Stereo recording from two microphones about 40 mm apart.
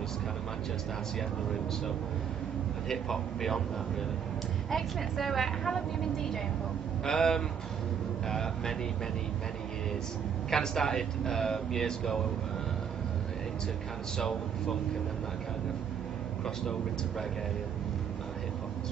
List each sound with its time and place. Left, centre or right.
2.9 s speech: centre
4.6 s a woman's voice: centre
7.1 s speech: centre
10.5 s speech: centre
14.1 s speech: centre